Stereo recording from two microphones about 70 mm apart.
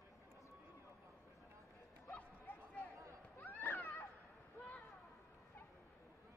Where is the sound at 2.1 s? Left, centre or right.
Left.